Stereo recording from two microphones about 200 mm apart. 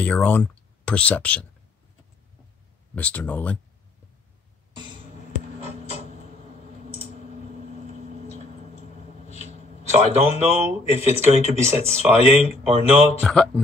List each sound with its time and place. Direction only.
0.0 s speech: 5° left (ahead or behind)
3.0 s speech: 5° left (ahead or behind)
5.6 s a sound: 30° right (ahead or behind)
7.8 s a sound: 35° right (ahead or behind)
9.8 s speech: 30° right (ahead or behind)
12.0 s speech: 10° right (ahead or behind)
12.4 s speech: 30° right (ahead or behind)
13.2 s speech: centre (ahead or behind)